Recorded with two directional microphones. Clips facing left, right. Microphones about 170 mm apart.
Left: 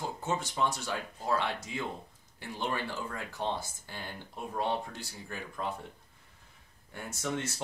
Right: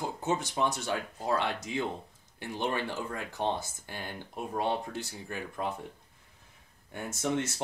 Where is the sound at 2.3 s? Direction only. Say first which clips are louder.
Right 3 dB; 20° right (ahead or behind).